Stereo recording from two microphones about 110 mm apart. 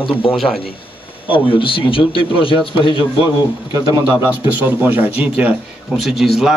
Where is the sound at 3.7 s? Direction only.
35° right (ahead or behind).